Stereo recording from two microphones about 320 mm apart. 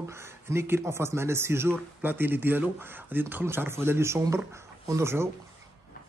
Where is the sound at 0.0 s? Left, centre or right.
Centre.